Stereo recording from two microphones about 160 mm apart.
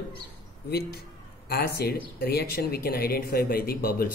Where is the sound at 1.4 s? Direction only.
80° left.